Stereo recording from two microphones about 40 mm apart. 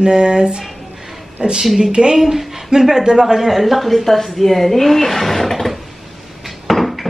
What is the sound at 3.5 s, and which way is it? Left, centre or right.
Speech, centre.